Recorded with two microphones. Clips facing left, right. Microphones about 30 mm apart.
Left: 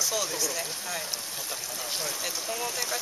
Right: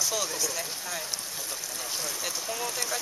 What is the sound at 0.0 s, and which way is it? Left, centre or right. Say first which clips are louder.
Speech: left 1 dB; centre.